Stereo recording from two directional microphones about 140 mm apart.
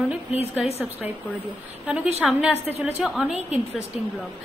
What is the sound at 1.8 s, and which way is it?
Speech, 5° right (ahead or behind).